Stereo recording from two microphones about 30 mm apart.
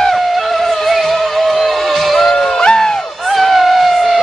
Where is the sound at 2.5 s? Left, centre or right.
Left.